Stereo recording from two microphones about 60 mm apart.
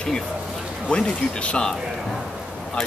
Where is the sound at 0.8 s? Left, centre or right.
Centre.